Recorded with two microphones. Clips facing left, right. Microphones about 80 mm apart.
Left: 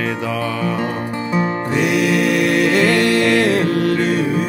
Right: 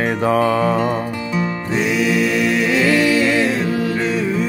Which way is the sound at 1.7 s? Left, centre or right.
Left.